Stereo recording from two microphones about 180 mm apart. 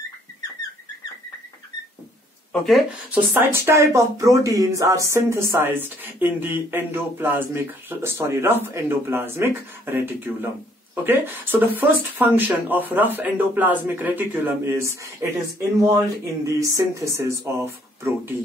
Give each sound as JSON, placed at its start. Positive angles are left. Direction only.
{"t": 2.5, "sound": "speech", "side_deg": 0}
{"t": 3.1, "sound": "speech", "side_deg": -10}
{"t": 16.4, "sound": "speech", "side_deg": -15}